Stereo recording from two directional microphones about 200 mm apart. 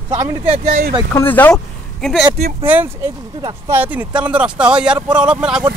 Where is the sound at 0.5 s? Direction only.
40° right (ahead or behind).